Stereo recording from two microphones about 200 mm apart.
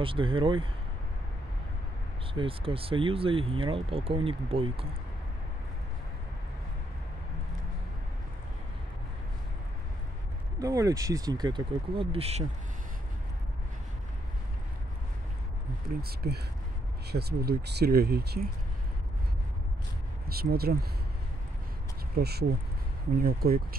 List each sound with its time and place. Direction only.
0.0 s speech: 25° right (ahead or behind)
2.3 s speech: 25° right (ahead or behind)
10.6 s speech: 15° right (ahead or behind)
16.0 s speech: 50° right (ahead or behind)
20.2 s speech: 50° right (ahead or behind)
22.1 s speech: 55° right (ahead or behind)